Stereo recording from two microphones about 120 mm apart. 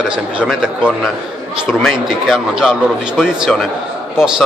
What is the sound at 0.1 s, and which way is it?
A man's voice, 5° right (ahead or behind).